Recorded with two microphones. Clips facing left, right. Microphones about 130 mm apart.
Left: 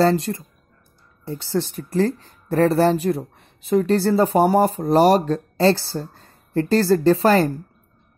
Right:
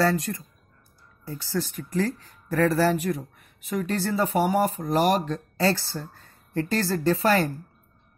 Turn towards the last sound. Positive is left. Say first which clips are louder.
# left 6 dB
turn(degrees=35)  # may be behind; listen again after turning